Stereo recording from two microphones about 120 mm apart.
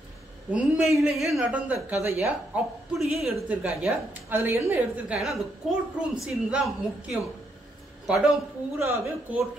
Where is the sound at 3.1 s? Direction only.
Centre (ahead or behind).